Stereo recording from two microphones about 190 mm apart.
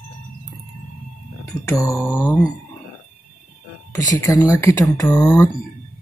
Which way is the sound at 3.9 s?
15° left (ahead or behind).